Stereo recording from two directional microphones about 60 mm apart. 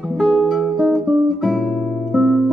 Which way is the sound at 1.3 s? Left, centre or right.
Centre.